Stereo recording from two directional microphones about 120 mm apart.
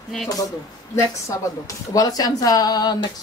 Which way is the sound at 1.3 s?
25° left (ahead or behind).